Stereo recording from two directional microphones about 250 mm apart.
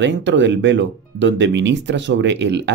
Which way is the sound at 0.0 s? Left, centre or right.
Right.